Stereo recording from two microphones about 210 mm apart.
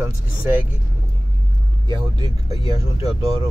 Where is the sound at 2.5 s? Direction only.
25° left (ahead or behind).